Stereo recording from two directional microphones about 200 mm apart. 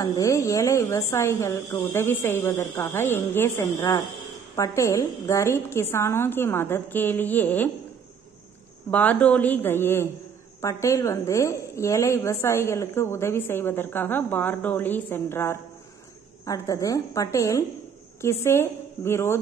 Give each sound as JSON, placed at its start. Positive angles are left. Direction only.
{"t": 0.0, "sound": "a woman's voice", "side_deg": 15}
{"t": 8.9, "sound": "a woman's voice", "side_deg": 10}